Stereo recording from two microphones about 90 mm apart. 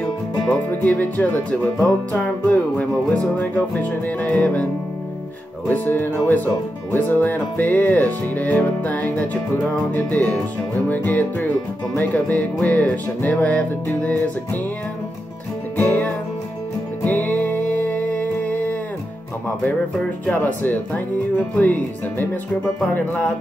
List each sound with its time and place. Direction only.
0.5 s speech: 20° left (ahead or behind)
2.1 s music: 15° left (ahead or behind)
5.7 s speech: 20° left (ahead or behind)
9.9 s music: 20° left (ahead or behind)
10.9 s speech: 20° left (ahead or behind)
12.0 s music: 15° left (ahead or behind)
15.9 s music: 20° left (ahead or behind)
20.4 s speech: 20° left (ahead or behind)